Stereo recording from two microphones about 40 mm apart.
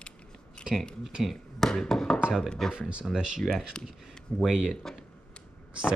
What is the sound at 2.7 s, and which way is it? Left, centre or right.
Speech, right.